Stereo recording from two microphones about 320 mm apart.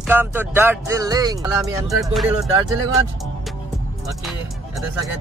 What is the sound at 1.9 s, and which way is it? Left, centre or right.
Speech, centre.